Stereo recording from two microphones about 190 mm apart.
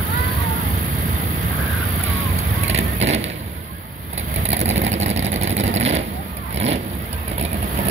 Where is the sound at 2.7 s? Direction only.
85° right.